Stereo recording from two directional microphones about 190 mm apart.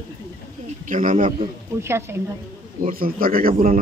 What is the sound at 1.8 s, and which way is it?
Speech, 15° right (ahead or behind).